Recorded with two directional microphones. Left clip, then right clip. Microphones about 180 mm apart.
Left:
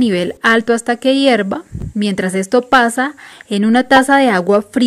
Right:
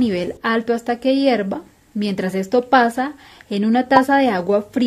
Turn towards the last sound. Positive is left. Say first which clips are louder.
# left 5 dB
turn(degrees=20)  # may be behind; listen again after turning